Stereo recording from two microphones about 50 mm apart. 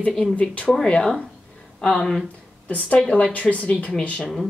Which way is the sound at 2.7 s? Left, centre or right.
Left.